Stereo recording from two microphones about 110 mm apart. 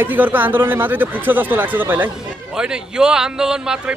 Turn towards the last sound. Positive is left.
turn(degrees=-5)  # may be behind; listen again after turning